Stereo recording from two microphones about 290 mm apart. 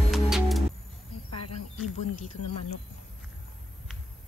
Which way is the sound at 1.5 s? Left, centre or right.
Left.